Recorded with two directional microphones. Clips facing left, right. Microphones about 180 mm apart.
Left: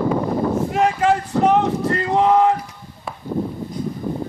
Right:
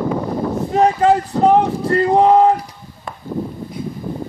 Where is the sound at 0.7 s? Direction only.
35° right (ahead or behind).